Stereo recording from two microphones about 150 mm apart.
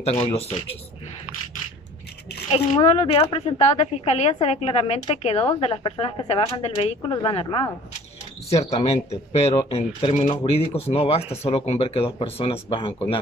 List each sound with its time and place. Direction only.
0.0 s a woman's voice: 45° left (ahead or behind)
2.5 s a woman's voice: 40° left (ahead or behind)
8.8 s a woman's voice: 45° left (ahead or behind)